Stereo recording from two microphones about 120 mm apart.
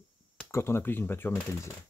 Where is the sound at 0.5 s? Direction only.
20° left (ahead or behind).